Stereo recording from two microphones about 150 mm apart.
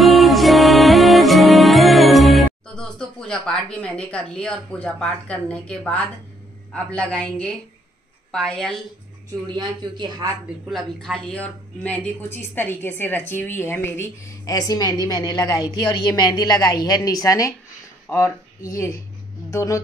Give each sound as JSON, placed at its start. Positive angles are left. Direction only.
{"t": 0.0, "sound": "music", "side_deg": 0}
{"t": 6.7, "sound": "a woman's voice", "side_deg": 5}
{"t": 9.5, "sound": "speech", "side_deg": -30}
{"t": 10.7, "sound": "a woman's voice", "side_deg": 5}